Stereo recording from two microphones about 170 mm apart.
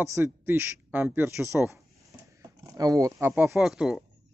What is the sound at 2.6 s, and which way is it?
Speech, 20° right (ahead or behind).